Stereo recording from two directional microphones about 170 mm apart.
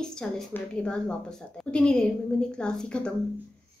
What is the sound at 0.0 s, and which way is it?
A woman's voice, 5° left (ahead or behind).